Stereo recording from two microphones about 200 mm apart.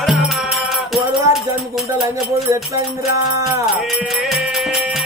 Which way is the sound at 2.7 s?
15° right (ahead or behind).